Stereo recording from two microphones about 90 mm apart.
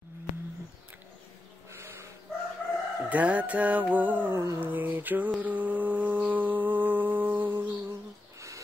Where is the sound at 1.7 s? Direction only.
30° right (ahead or behind).